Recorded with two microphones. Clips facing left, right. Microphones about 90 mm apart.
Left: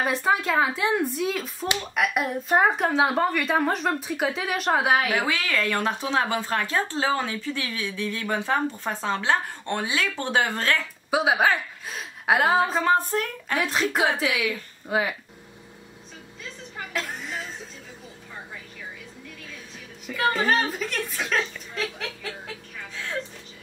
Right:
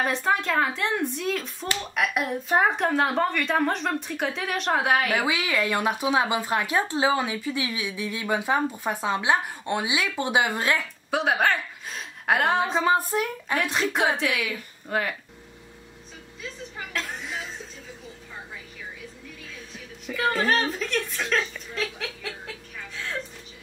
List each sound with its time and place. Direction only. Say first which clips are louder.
0.0 s a woman's voice: left 1 dB; 5° left (ahead or behind)
5.2 s speech: even; 15° right (ahead or behind)
11.1 s a woman's voice: left 2 dB; 5° left (ahead or behind)
12.8 s speech: even; 10° right (ahead or behind)
13.6 s a woman's voice: left 1 dB; centre (ahead or behind)
16.7 s a sound: left 2 dB; centre (ahead or behind)
20.1 s a woman's voice: left 1 dB; centre (ahead or behind)